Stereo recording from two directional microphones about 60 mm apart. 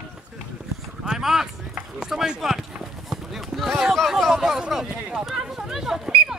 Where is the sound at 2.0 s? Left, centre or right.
Centre.